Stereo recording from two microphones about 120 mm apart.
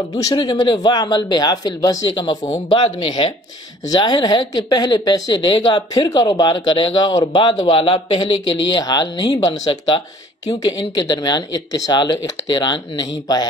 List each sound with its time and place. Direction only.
0.1 s a woman's voice: 30° left (ahead or behind)